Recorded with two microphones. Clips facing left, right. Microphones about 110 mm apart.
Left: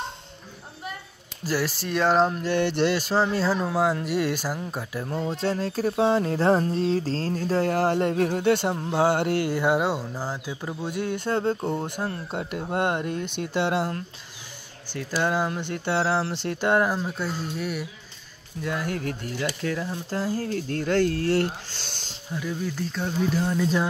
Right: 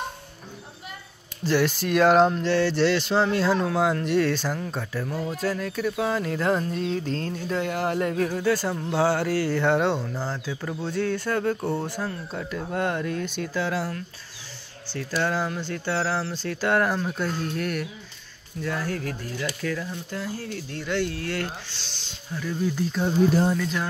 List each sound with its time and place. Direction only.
1.4 s speech: 5° left (ahead or behind)
2.3 s speech: 15° left (ahead or behind)
5.0 s speech: 25° left (ahead or behind)
12.3 s speech: 55° left (ahead or behind)
13.5 s speech: 25° left (ahead or behind)
16.6 s speech: 10° left (ahead or behind)
18.6 s speech: 20° left (ahead or behind)
20.1 s speech: 35° left (ahead or behind)
22.3 s speech: 10° left (ahead or behind)
22.8 s speech: 5° right (ahead or behind)